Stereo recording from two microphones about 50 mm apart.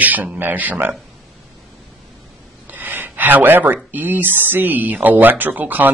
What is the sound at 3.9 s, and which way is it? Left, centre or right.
Speech, right.